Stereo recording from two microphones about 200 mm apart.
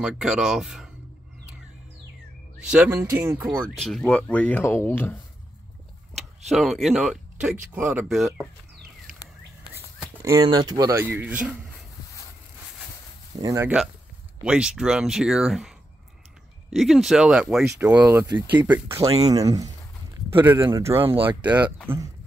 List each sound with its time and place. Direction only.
0.0 s speech: 5° right (ahead or behind)
2.9 s speech: 10° right (ahead or behind); by 5.2 s 10° left (ahead or behind)
6.5 s speech: centre (ahead or behind)
10.2 s speech: 20° right (ahead or behind)
13.4 s speech: 15° right (ahead or behind)
16.7 s speech: centre (ahead or behind)
21.1 s speech: 25° right (ahead or behind)
21.9 s speech: 10° right (ahead or behind)